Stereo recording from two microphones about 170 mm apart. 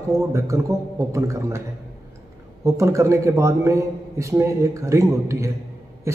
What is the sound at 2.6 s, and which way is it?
A man's voice, 15° right (ahead or behind).